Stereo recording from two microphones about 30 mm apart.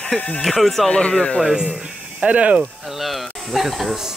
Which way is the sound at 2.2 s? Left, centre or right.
Right.